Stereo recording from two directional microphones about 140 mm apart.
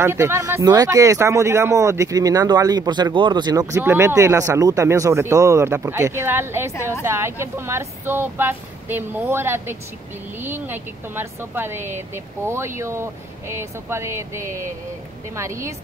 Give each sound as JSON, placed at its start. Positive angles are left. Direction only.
{"t": 0.0, "sound": "speech", "side_deg": -20}
{"t": 3.7, "sound": "speech", "side_deg": -15}